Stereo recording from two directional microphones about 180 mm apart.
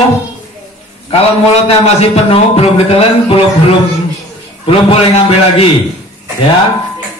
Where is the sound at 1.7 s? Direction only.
35° left (ahead or behind).